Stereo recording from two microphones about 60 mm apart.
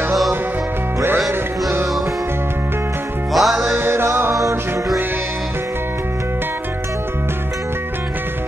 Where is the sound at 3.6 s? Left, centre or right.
Right.